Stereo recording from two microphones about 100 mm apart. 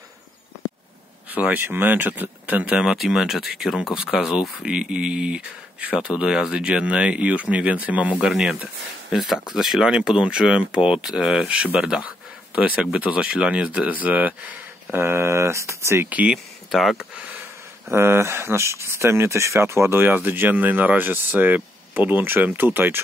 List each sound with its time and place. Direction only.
1.3 s speech: 15° right (ahead or behind)
8.3 s speech: 5° right (ahead or behind); by 16.1 s 25° right (ahead or behind)
16.1 s speech: 15° right (ahead or behind)
16.7 s speech: centre (ahead or behind)
17.9 s speech: 25° right (ahead or behind)